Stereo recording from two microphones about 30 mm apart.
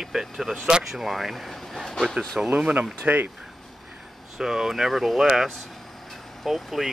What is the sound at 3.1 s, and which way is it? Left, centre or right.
Speech, right.